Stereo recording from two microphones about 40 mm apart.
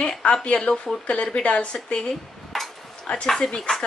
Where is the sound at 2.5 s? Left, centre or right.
Centre.